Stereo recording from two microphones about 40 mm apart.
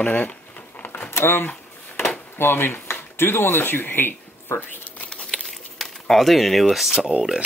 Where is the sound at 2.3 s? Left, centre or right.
Left.